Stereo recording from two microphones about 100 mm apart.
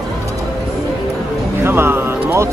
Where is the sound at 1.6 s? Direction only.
25° right (ahead or behind).